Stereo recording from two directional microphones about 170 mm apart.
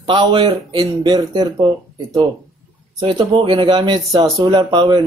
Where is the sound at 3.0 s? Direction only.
30° right (ahead or behind).